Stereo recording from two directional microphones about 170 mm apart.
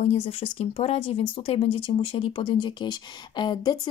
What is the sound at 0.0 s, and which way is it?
Speech, 35° left (ahead or behind).